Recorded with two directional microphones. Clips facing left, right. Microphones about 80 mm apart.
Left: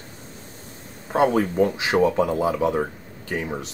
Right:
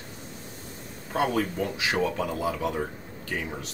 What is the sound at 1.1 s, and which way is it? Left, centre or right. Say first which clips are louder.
Speech: left 6 dB; left.